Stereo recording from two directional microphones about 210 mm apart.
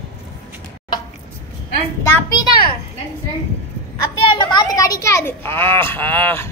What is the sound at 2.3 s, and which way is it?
Speech, 20° left (ahead or behind).